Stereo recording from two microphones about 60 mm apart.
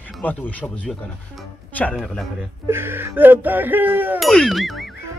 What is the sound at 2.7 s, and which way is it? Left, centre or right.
Speech, right.